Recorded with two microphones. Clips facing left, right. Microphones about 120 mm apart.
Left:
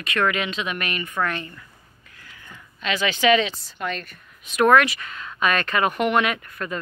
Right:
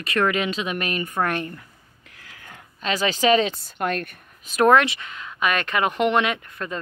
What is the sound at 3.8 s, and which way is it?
Speech, 55° right (ahead or behind).